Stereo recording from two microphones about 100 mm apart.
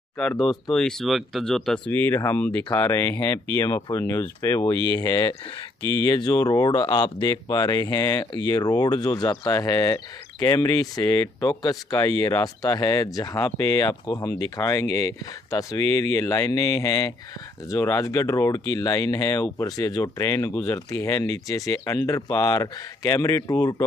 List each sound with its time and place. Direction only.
0.4 s speech: centre (ahead or behind)
1.9 s speech: 20° left (ahead or behind)
4.7 s speech: 55° right (ahead or behind)
5.0 s speech: 40° left (ahead or behind)
5.8 s speech: 55° right (ahead or behind)
6.1 s speech: 40° left (ahead or behind)